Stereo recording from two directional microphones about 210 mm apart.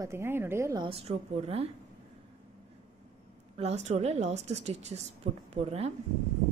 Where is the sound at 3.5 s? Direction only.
30° right (ahead or behind).